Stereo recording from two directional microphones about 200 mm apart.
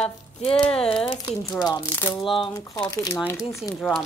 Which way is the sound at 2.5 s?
20° left (ahead or behind).